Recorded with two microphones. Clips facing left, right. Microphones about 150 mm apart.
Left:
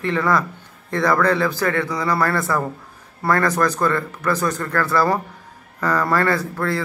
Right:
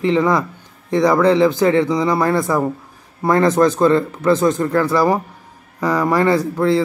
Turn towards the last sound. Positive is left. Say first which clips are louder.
# right 6 dB
turn(degrees=-20)  # may be behind; listen again after turning